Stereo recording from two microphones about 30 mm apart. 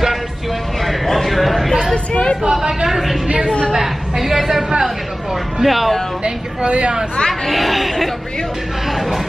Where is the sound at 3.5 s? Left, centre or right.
Left.